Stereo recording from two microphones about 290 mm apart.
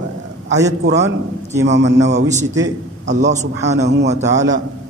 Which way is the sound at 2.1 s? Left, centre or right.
Right.